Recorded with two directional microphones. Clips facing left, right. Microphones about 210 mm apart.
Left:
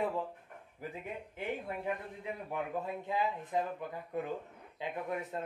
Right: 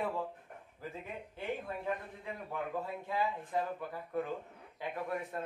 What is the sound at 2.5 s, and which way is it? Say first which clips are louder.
A man's voice: left 1 dB; 20° left (ahead or behind).